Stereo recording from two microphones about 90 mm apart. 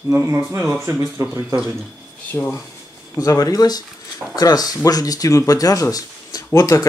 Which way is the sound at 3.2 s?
40° left (ahead or behind).